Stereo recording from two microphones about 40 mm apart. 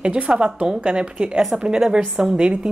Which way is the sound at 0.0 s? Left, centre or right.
Right.